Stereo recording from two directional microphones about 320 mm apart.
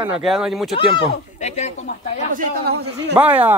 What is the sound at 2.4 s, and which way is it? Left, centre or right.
Speech, right.